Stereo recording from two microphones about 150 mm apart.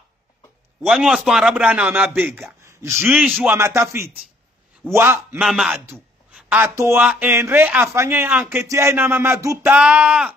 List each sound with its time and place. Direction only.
0.8 s a man's voice: 5° right (ahead or behind)
5.4 s a man's voice: centre (ahead or behind)